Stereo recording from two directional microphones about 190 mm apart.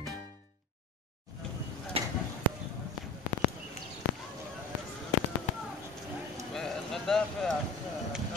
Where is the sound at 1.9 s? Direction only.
30° right (ahead or behind).